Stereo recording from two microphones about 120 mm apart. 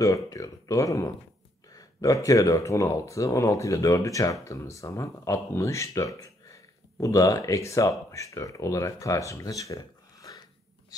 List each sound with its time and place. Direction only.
0.0 s speech: 30° left (ahead or behind)
1.7 s a sound: 30° left (ahead or behind)
2.2 s speech: 30° left (ahead or behind)